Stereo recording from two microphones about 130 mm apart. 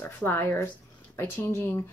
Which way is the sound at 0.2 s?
15° left (ahead or behind).